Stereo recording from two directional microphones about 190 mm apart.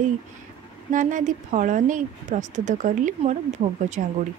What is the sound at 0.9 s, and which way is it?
A woman's voice, 45° right (ahead or behind).